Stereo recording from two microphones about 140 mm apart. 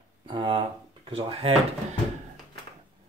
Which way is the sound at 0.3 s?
35° right (ahead or behind).